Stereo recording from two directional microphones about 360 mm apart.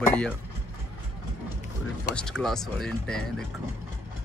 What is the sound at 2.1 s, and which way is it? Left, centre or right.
Speech, centre.